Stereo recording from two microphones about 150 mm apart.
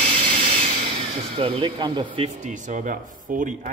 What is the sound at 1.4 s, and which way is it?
Speech, 40° right (ahead or behind).